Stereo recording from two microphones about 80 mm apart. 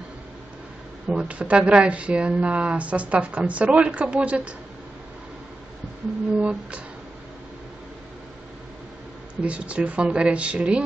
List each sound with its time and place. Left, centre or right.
1.0 s speech: centre
6.3 s speech: centre
9.4 s speech: centre